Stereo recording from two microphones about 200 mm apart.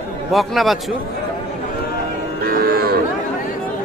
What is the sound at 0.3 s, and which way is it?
Speech, centre (ahead or behind).